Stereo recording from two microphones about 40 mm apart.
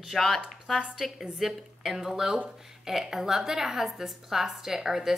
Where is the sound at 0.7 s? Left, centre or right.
Centre.